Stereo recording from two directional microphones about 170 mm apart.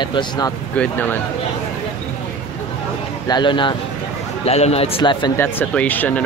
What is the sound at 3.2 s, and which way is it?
A man's voice, 25° left (ahead or behind).